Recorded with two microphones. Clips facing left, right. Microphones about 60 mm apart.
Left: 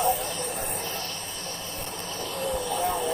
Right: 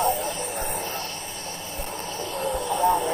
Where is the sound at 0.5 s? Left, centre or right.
Centre.